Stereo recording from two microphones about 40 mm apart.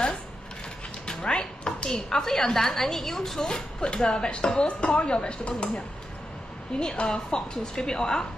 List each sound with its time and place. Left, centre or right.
1.0 s dishes: centre
2.0 s a woman's voice: centre
3.8 s speech: left
6.7 s a woman's voice: centre